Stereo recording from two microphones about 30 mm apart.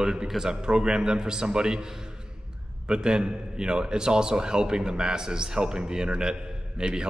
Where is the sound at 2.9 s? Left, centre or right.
Right.